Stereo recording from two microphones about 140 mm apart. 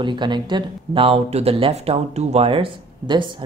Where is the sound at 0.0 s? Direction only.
35° right (ahead or behind).